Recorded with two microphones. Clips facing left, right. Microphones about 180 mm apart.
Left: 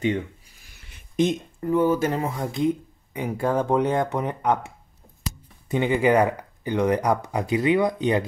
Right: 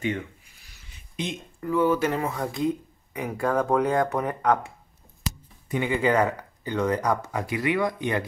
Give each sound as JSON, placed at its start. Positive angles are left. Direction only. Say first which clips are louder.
{"t": 0.7, "sound": "a sound", "louder": "left 12 dB", "side_deg": 45}
{"t": 1.8, "sound": "speech", "louder": "left 1 dB", "side_deg": 45}
{"t": 2.1, "sound": "speech", "louder": "left 1 dB", "side_deg": 25}